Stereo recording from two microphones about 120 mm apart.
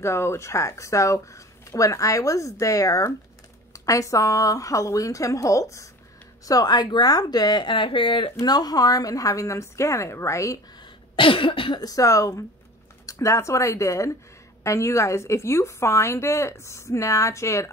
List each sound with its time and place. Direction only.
0.0 s a woman's voice: 20° left (ahead or behind); by 8.3 s 45° left (ahead or behind)
8.4 s speech: 35° left (ahead or behind)
11.1 s cough: 45° left (ahead or behind)
11.8 s speech: 30° left (ahead or behind)